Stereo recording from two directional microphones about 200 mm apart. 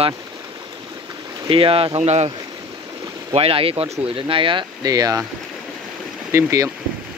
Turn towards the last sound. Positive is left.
turn(degrees=-15)  # may be behind; listen again after turning